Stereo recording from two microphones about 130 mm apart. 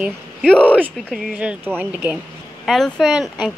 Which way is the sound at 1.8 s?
15° right (ahead or behind).